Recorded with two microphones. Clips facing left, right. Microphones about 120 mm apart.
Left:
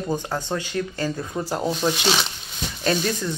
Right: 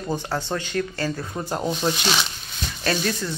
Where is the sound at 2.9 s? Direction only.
15° left (ahead or behind).